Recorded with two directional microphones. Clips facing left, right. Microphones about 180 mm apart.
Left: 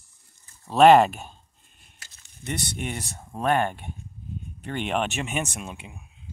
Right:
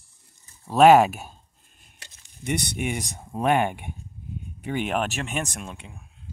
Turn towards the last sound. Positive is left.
turn(degrees=5)  # may be behind; listen again after turning